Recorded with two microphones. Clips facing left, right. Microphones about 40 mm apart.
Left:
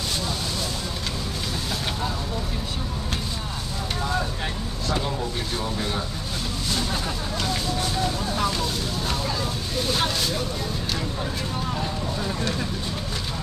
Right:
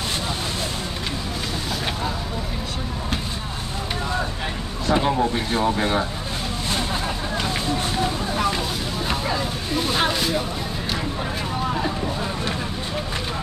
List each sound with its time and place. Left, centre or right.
4.8 s speech: right
6.7 s vehicle: right
7.4 s a sound: right